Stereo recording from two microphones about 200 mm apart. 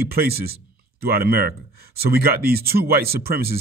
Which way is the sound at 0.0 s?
50° right (ahead or behind).